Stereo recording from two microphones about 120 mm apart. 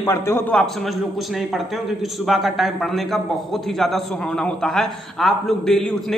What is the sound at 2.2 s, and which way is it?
A man's voice, centre (ahead or behind).